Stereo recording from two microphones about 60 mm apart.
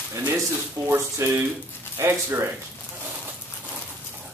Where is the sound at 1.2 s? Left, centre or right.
Right.